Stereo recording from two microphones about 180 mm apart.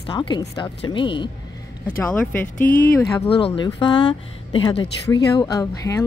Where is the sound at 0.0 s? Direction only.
25° left (ahead or behind).